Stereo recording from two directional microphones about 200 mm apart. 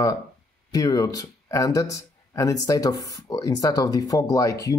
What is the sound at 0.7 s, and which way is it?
Speech, 20° left (ahead or behind).